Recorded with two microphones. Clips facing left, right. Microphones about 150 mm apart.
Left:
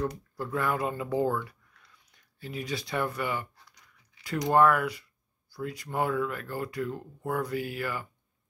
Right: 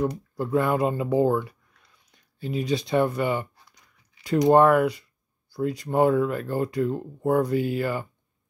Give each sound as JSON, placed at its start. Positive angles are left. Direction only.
{"t": 0.1, "sound": "speech", "side_deg": -25}
{"t": 4.5, "sound": "speech", "side_deg": -25}